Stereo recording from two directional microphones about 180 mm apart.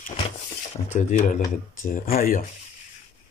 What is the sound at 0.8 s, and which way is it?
Speech, 45° left (ahead or behind).